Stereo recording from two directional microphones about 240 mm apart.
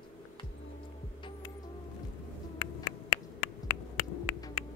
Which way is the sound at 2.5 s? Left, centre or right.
Left.